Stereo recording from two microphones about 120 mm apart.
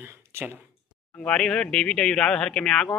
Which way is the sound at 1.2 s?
5° left (ahead or behind).